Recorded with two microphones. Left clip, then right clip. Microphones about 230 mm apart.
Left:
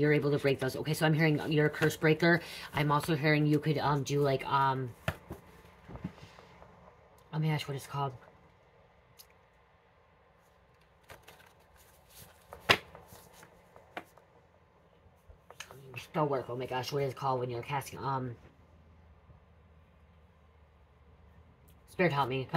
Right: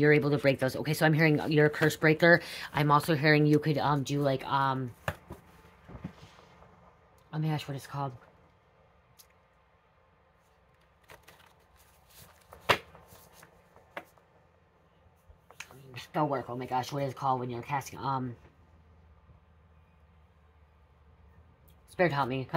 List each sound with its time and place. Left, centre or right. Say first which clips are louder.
0.0 s speech: right 4 dB; right
7.2 s speech: even; right
12.9 s shuffling cards: left 2 dB; left
16.1 s speech: right 1 dB; right
22.0 s speech: right 2 dB; right